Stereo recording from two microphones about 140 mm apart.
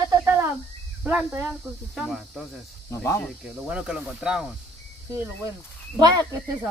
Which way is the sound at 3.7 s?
5° right (ahead or behind).